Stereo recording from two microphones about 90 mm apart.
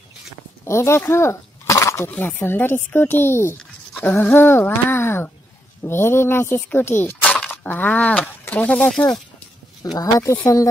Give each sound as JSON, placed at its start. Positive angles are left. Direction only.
{"t": 0.7, "sound": "a sound", "side_deg": 30}
{"t": 2.0, "sound": "speech", "side_deg": 20}
{"t": 3.5, "sound": "writing", "side_deg": 10}
{"t": 4.1, "sound": "speech", "side_deg": 20}
{"t": 7.2, "sound": "a sound", "side_deg": 10}
{"t": 7.5, "sound": "speech", "side_deg": 20}
{"t": 9.9, "sound": "speech", "side_deg": 40}